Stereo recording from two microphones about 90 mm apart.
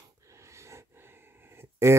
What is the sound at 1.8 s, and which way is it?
Speech, 30° right (ahead or behind).